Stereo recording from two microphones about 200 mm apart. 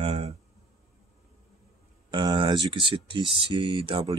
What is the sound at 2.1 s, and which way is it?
Speech, 25° right (ahead or behind).